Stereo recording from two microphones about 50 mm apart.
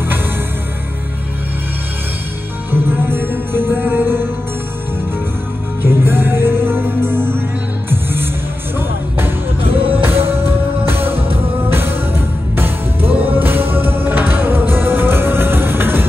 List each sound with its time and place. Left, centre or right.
2.7 s music: right
5.8 s music: right